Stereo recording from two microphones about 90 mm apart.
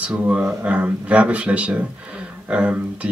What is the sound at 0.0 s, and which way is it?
Speech, 15° right (ahead or behind).